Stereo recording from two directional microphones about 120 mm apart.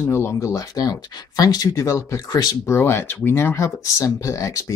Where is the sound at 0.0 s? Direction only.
20° left (ahead or behind).